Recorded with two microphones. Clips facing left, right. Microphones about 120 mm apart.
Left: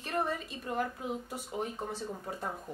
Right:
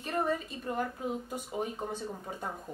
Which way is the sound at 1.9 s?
Centre (ahead or behind).